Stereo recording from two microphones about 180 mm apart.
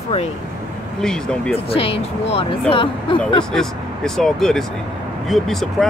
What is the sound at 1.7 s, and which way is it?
Speech, 30° left (ahead or behind).